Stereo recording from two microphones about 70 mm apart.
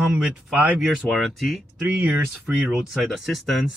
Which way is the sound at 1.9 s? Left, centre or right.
Centre.